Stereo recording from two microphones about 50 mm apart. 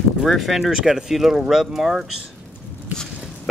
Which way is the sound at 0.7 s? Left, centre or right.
Centre.